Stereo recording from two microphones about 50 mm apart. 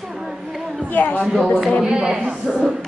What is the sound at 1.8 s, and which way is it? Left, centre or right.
Speech, centre.